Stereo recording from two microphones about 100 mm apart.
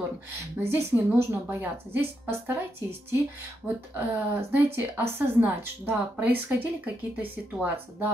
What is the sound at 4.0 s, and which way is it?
A woman's voice, 15° right (ahead or behind).